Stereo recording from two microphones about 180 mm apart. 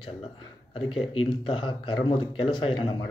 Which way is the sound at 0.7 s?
30° left (ahead or behind).